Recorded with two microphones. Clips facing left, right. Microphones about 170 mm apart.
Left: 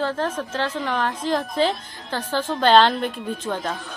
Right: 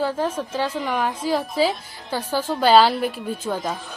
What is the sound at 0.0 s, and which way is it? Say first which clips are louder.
A woman's voice: right 1 dB; 10° right (ahead or behind).